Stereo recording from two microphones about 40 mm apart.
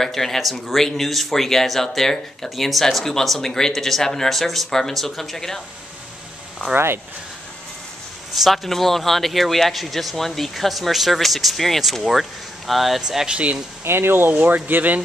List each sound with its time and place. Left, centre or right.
0.0 s speech: centre
8.4 s speech: centre
13.3 s speech: right
13.8 s speech: right
14.4 s speech: right